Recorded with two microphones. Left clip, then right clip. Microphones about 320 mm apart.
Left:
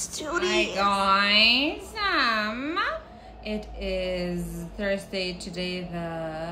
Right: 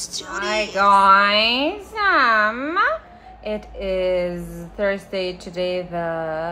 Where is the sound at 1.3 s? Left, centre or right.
Centre.